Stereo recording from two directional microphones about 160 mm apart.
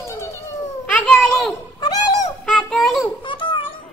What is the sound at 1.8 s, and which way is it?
Dog, 25° left (ahead or behind).